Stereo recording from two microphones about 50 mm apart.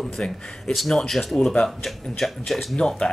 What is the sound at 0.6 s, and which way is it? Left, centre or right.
Speech, centre.